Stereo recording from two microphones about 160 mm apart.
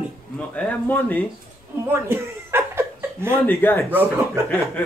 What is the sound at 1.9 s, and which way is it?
Chuckle, 15° right (ahead or behind).